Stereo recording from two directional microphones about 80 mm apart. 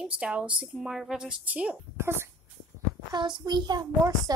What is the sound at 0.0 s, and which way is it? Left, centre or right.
Speech, centre.